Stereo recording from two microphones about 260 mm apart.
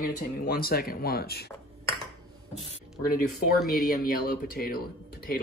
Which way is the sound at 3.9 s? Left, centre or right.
Left.